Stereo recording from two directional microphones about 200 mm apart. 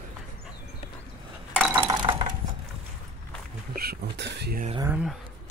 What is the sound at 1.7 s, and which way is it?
Chink, 15° right (ahead or behind).